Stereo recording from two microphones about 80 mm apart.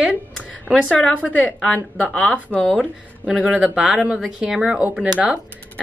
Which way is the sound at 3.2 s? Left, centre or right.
Centre.